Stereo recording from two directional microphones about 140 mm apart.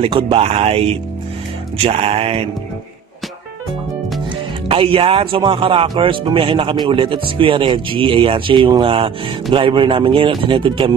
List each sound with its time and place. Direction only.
0.0 s speech: 40° right (ahead or behind)
4.6 s speech: 40° right (ahead or behind)